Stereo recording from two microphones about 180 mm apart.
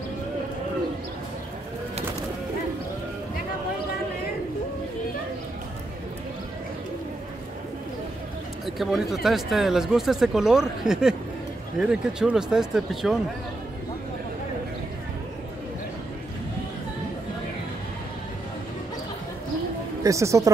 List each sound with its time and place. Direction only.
8.6 s speech: centre (ahead or behind)
20.0 s speech: 15° right (ahead or behind)